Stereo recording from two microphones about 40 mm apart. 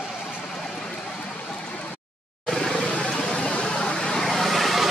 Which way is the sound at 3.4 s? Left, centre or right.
Left.